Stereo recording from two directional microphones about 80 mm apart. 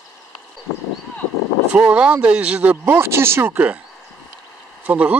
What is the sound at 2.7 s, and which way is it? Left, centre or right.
Speech, right.